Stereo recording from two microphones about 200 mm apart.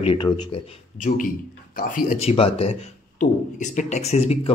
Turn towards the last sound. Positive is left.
turn(degrees=30)  # may be behind; listen again after turning